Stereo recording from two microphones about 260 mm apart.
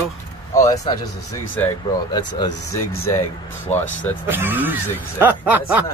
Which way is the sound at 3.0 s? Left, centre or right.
Centre.